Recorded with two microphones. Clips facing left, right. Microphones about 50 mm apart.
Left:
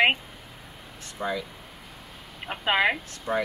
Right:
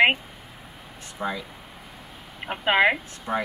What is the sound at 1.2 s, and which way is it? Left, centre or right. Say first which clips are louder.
Speech: even; centre.